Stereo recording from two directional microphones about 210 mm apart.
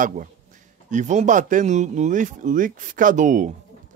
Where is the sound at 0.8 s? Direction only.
35° right (ahead or behind).